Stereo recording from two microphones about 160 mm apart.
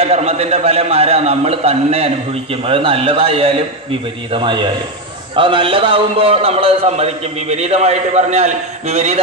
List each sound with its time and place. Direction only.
0.0 s a man's voice: 40° right (ahead or behind)